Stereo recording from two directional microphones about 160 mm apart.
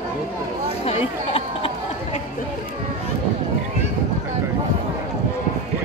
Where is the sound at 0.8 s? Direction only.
35° left (ahead or behind).